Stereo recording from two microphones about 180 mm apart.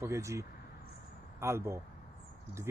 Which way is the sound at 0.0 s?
15° right (ahead or behind).